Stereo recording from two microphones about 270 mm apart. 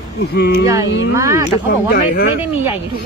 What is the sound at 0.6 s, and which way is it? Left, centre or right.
Speech, centre.